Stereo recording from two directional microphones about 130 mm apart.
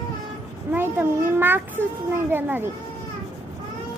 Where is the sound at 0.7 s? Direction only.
15° right (ahead or behind).